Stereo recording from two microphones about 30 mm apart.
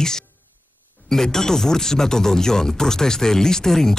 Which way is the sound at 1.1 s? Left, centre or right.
Centre.